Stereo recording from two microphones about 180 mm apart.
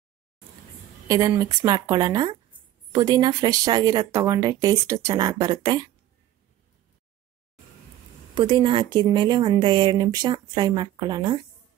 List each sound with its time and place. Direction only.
1.0 s speech: 20° right (ahead or behind)
8.4 s speech: 25° right (ahead or behind)